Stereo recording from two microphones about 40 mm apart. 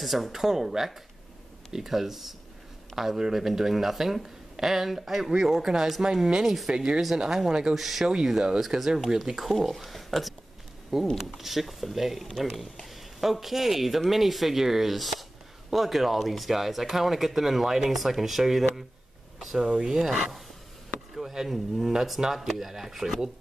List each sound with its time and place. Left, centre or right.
0.0 s speech: centre
6.0 s speech: right
6.4 s speech: centre
19.4 s a sound: centre
19.9 s speech: centre